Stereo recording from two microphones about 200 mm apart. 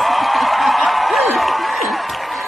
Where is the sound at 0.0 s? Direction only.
Centre (ahead or behind).